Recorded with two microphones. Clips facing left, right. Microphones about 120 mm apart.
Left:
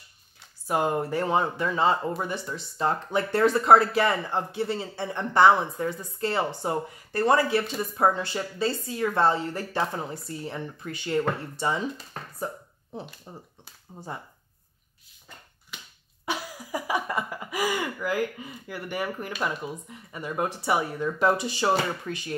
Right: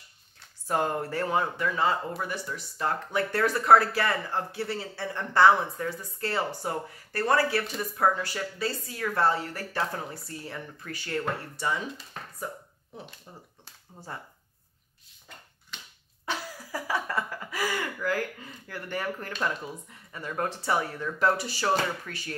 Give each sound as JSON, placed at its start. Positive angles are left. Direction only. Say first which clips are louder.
{"t": 0.7, "sound": "speech", "louder": "left 3 dB", "side_deg": 15}
{"t": 15.7, "sound": "finger snapping", "louder": "left 1 dB", "side_deg": 10}
{"t": 16.3, "sound": "speech", "louder": "left 3 dB", "side_deg": 15}